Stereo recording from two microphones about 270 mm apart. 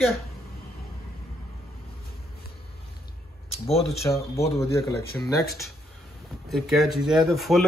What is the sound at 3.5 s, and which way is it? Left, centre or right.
Speech, left.